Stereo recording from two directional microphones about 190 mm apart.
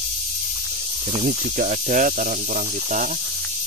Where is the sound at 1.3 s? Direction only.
45° right (ahead or behind).